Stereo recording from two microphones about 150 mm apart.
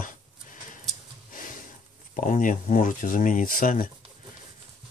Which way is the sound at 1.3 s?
65° left (ahead or behind).